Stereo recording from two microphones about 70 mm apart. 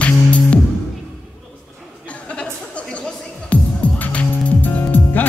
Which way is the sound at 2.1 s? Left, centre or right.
Centre.